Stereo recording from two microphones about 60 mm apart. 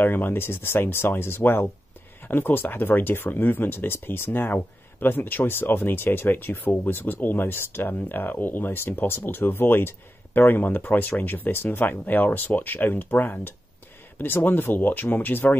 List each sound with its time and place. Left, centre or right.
0.0 s speech: left